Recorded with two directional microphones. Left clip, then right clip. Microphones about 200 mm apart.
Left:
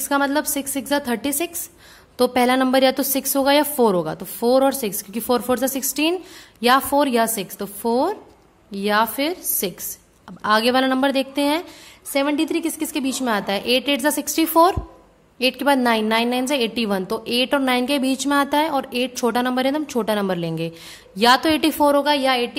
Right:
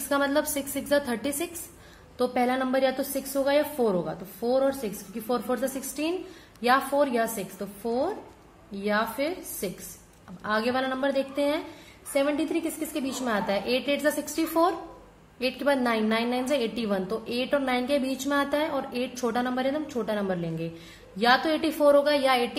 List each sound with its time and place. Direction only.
0.1 s a woman's voice: 30° left (ahead or behind)
2.1 s a woman's voice: 45° left (ahead or behind); by 22.6 s 30° left (ahead or behind)